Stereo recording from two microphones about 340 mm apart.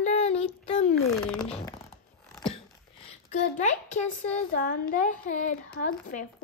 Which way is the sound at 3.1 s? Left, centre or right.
Left.